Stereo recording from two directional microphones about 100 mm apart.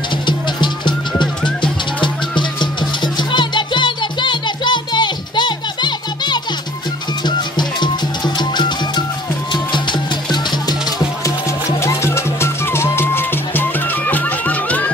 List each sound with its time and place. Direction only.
0.3 s music: 50° left (ahead or behind)
11.8 s music: 25° left (ahead or behind)